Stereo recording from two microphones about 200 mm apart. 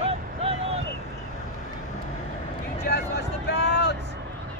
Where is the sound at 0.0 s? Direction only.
30° right (ahead or behind).